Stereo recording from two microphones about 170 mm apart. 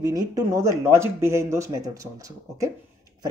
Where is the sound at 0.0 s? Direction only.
20° right (ahead or behind).